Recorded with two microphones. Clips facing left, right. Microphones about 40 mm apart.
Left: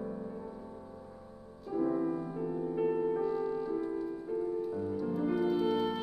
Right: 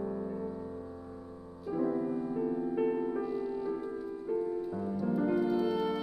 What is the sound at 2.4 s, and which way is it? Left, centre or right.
Music, centre.